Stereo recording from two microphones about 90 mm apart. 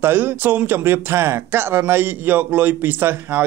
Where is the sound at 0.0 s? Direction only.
25° right (ahead or behind).